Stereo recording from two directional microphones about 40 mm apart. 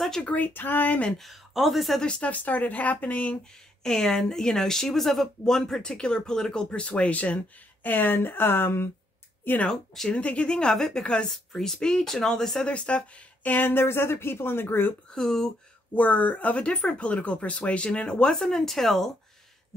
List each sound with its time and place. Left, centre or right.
0.2 s speech: left
0.5 s speech: left
1.3 s speech: centre
2.0 s speech: left
2.3 s speech: left
3.8 s a woman's voice: centre; by 7.3 s left
7.8 s speech: left
10.0 s speech: left
11.2 s a woman's voice: centre
12.6 s speech: left
13.5 s a woman's voice: left
15.1 s a woman's voice: centre
15.9 s speech: left
18.3 s a woman's voice: centre